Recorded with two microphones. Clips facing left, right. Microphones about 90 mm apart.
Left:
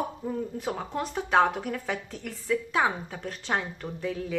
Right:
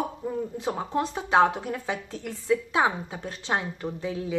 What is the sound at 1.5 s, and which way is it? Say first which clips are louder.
A woman's voice: right 1 dB; 25° right (ahead or behind).